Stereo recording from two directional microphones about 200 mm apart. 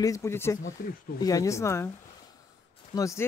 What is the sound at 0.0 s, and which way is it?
Speech, 15° left (ahead or behind).